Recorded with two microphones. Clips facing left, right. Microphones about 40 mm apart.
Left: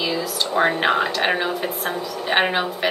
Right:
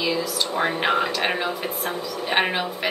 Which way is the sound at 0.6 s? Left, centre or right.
Centre.